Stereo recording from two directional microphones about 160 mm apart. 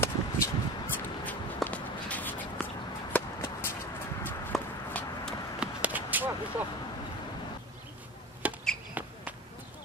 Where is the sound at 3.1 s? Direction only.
15° left (ahead or behind).